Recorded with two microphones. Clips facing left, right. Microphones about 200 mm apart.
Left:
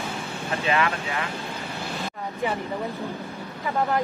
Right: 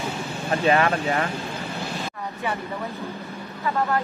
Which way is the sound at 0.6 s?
40° right (ahead or behind).